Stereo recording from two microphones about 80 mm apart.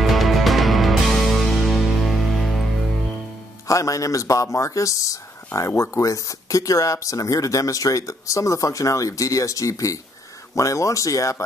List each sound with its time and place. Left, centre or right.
0.0 s music: centre
3.6 s speech: left